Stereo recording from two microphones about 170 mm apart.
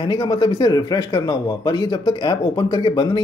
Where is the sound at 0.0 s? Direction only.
25° left (ahead or behind).